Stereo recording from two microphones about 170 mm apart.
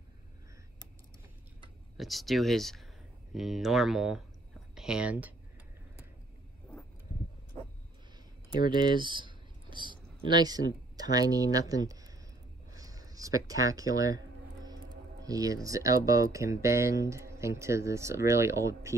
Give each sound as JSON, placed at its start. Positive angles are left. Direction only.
{"t": 2.0, "sound": "speech", "side_deg": 0}
{"t": 8.6, "sound": "speech", "side_deg": -25}
{"t": 12.7, "sound": "a sound", "side_deg": -20}
{"t": 15.2, "sound": "speech", "side_deg": -20}